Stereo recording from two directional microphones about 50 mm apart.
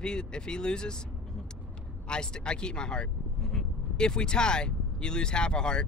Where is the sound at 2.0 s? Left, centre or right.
Centre.